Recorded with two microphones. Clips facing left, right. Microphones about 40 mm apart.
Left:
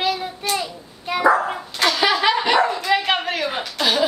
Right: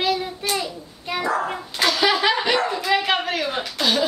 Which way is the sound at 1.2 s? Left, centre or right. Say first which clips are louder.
Left 7 dB; centre.